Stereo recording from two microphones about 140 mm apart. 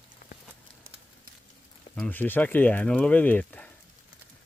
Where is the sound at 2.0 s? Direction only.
15° left (ahead or behind).